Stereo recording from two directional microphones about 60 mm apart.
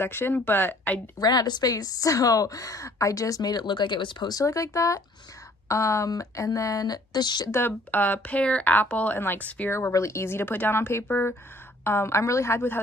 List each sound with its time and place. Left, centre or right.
0.0 s speech: left
1.2 s a woman's voice: left
7.5 s speech: left
9.7 s speech: left